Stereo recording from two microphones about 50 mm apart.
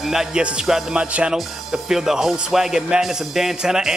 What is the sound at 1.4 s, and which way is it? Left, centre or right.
Speech, centre.